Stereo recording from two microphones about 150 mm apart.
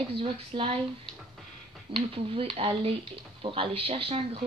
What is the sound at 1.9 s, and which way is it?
Speech, 40° right (ahead or behind).